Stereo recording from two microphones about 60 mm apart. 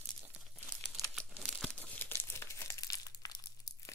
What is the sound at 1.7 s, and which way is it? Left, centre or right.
Crumpling, left.